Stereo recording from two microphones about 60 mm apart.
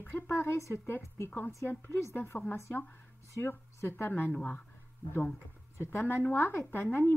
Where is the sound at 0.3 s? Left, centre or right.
Left.